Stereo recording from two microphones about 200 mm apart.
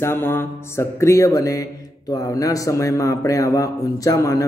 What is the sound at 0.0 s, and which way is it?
A man's voice, 10° left (ahead or behind).